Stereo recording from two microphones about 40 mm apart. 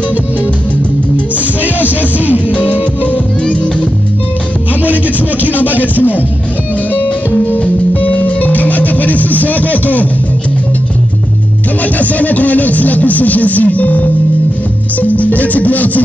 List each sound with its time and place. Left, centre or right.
1.1 s music: right
7.9 s music: left
11.8 s speech: left